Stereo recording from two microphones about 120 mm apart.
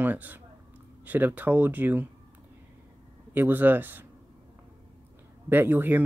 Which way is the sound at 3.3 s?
15° right (ahead or behind).